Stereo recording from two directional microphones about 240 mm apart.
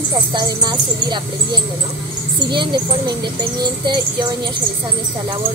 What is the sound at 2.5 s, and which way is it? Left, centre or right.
A child's voice, centre.